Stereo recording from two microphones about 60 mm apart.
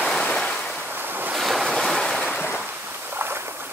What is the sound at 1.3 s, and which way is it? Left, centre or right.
Waves, centre.